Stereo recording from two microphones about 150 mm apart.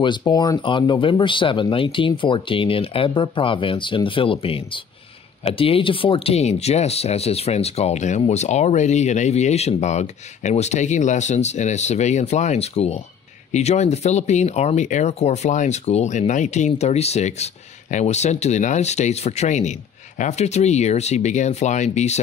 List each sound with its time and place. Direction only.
0.0 s speech: 30° left (ahead or behind); by 22.2 s 50° left (ahead or behind)